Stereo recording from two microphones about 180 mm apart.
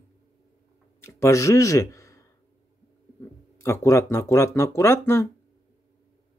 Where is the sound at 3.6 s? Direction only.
15° left (ahead or behind).